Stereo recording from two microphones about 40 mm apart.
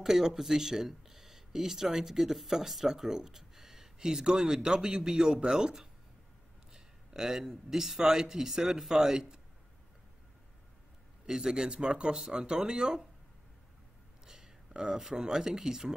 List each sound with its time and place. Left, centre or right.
0.0 s speech: centre
11.2 s speech: centre
14.2 s speech: centre